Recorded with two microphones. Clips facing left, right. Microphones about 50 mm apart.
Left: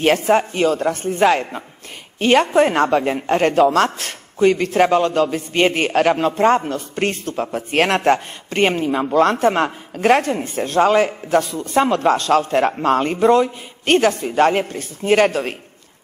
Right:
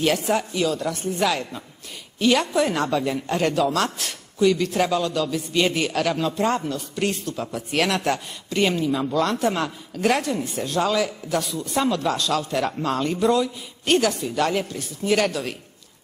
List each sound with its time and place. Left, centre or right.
0.0 s a woman's voice: left